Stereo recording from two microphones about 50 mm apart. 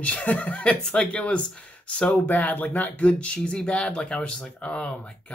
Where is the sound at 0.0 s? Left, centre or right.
Left.